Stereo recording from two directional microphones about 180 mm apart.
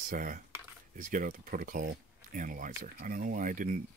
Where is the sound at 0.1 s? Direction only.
50° right (ahead or behind).